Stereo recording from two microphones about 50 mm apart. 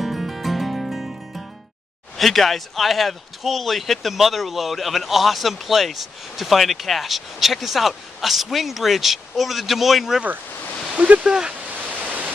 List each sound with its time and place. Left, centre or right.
0.0 s music: centre
2.1 s a man's voice: centre
11.0 s speech: right
11.6 s a sound: right